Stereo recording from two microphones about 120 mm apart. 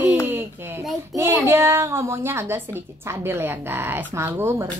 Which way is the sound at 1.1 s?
20° right (ahead or behind).